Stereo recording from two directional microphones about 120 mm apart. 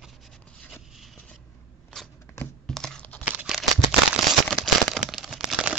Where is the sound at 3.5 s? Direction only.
5° right (ahead or behind).